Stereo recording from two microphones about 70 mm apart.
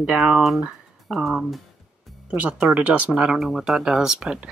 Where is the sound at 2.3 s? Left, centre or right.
Centre.